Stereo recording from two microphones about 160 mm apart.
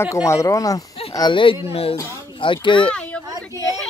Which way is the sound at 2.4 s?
30° left (ahead or behind).